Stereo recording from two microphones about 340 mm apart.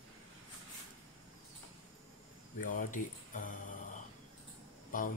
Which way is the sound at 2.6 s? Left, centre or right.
Left.